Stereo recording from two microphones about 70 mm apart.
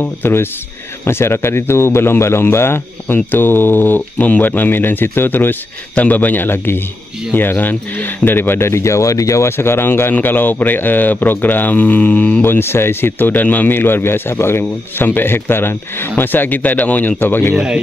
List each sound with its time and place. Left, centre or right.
0.0 s speech: left